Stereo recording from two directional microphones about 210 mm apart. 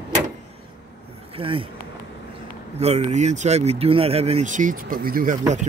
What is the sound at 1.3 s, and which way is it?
Speech, 25° right (ahead or behind).